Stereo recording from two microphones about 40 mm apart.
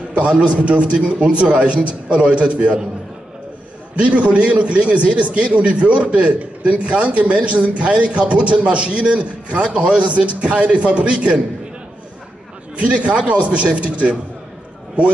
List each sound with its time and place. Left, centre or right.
0.2 s a man's voice: right
3.9 s a man's voice: right
12.7 s a man's voice: right